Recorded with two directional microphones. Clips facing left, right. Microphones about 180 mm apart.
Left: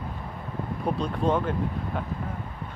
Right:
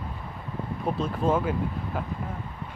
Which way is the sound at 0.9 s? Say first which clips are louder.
Even; 5° right (ahead or behind).